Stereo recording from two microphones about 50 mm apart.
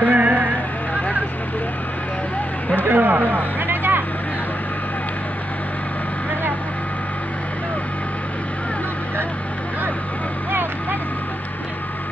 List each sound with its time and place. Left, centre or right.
0.0 s music: right
2.8 s speech: right
10.5 s vehicle: right